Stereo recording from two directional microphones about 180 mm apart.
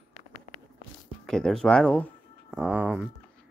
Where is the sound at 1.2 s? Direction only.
5° left (ahead or behind).